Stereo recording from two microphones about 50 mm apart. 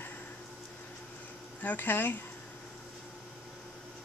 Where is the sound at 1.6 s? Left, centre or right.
Left.